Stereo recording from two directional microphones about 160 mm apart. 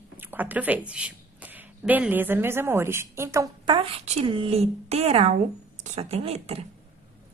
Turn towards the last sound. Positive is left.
turn(degrees=-40)  # may be behind; listen again after turning